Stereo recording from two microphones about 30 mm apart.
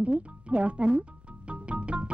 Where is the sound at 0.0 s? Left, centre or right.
Right.